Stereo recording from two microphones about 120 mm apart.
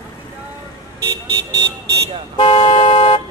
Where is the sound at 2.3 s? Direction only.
45° left (ahead or behind).